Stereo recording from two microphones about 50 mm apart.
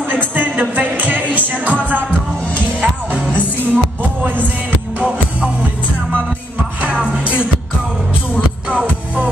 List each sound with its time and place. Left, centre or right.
0.1 s music: right
3.7 s music: right
6.8 s music: right
8.6 s music: right